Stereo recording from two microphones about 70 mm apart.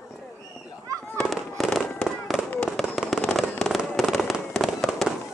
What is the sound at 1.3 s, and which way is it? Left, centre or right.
Fireworks, centre.